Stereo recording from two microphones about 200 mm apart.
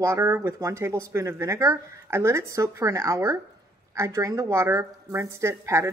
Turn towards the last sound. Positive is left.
turn(degrees=-15)  # may be behind; listen again after turning